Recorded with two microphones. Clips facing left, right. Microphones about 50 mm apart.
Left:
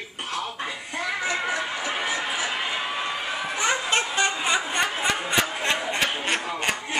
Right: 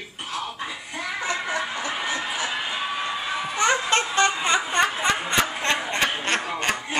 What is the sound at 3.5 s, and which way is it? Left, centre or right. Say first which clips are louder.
Baby laughter: right 3 dB; centre.